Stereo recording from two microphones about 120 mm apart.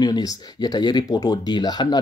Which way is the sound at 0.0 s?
35° left (ahead or behind).